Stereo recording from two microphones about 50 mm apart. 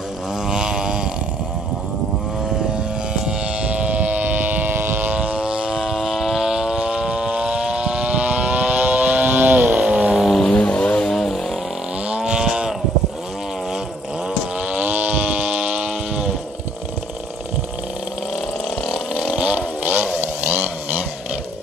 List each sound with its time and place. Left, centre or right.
0.5 s a sound: centre
3.3 s vehicle: right
5.1 s vehicle: right
9.8 s vehicle: right
10.1 s vehicle: centre
10.4 s vehicle: centre
12.3 s cattle: centre
14.7 s a sound: right; by 16.3 s centre
19.3 s vehicle: right